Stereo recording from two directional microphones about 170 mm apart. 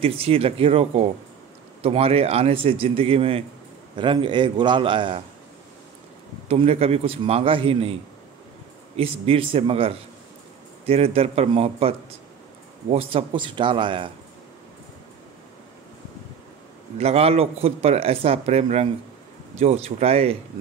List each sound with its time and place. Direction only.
0.0 s a man's voice: 35° right (ahead or behind)
6.5 s a man's voice: 35° right (ahead or behind)
12.9 s a man's voice: 35° right (ahead or behind)
17.0 s a man's voice: 35° right (ahead or behind)